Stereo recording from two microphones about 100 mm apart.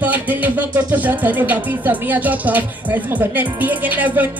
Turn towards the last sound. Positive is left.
turn(degrees=-15)  # may be behind; listen again after turning